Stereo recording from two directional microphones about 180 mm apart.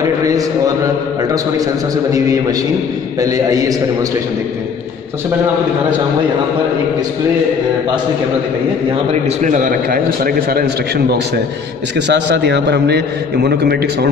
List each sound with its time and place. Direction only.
0.0 s a man's voice: 20° right (ahead or behind)
3.2 s a man's voice: 20° right (ahead or behind)
9.4 s a man's voice: 45° right (ahead or behind); by 13.7 s 65° right (ahead or behind)